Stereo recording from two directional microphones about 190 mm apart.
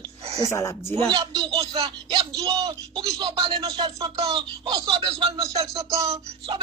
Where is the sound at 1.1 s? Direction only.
25° right (ahead or behind).